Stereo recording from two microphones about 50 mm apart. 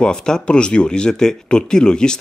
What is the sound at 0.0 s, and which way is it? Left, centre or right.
Speech, centre.